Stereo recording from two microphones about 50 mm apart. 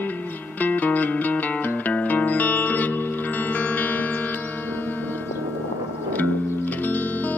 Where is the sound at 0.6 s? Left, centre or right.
Left.